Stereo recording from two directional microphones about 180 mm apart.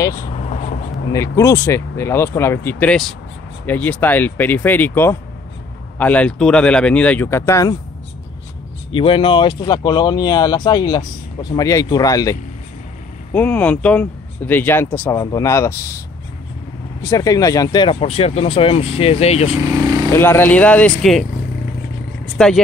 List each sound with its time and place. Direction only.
0.3 s vehicle: 40° left (ahead or behind)
1.1 s speech: 15° left (ahead or behind)
8.9 s speech: 30° left (ahead or behind)
13.3 s speech: 10° left (ahead or behind)
17.0 s speech: 20° left (ahead or behind); by 19.5 s 35° left (ahead or behind)
20.1 s speech: 10° left (ahead or behind)
22.2 s vehicle: 5° left (ahead or behind)